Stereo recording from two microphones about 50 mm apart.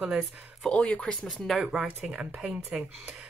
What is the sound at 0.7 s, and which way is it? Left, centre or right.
Speech, left.